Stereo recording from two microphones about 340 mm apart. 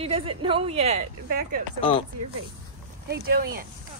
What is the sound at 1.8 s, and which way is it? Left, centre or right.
Speech, centre.